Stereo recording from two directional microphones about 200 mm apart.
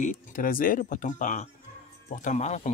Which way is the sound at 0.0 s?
40° left (ahead or behind).